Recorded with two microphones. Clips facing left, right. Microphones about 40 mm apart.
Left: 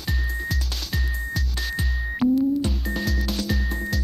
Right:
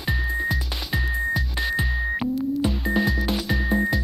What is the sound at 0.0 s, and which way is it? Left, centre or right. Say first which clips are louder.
Music: right 5 dB; centre.